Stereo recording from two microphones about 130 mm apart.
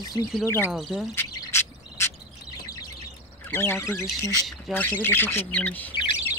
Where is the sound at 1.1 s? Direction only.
20° left (ahead or behind).